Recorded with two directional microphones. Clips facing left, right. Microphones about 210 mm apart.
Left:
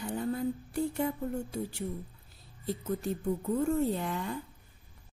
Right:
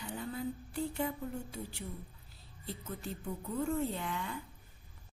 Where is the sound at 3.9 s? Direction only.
40° left (ahead or behind).